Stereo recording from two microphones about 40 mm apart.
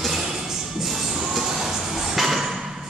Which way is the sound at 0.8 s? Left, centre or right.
Centre.